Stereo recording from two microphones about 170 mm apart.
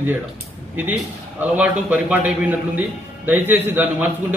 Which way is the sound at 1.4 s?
5° right (ahead or behind).